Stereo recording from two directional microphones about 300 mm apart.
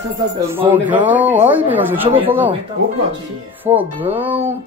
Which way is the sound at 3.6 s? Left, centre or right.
Centre.